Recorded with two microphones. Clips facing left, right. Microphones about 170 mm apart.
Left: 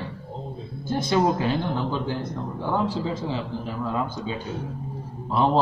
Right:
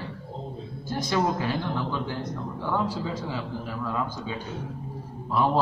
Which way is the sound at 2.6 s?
25° left (ahead or behind).